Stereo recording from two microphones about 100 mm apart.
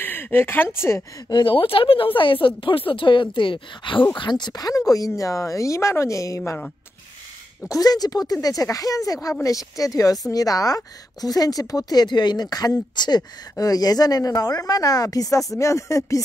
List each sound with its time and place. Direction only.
0.0 s speech: 20° left (ahead or behind)
1.3 s speech: 55° left (ahead or behind)
4.2 s speech: 45° left (ahead or behind); by 6.6 s 30° left (ahead or behind)
7.6 s speech: 35° left (ahead or behind)